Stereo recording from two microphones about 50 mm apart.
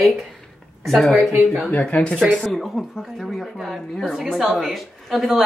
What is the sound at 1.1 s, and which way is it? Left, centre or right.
Speech, centre.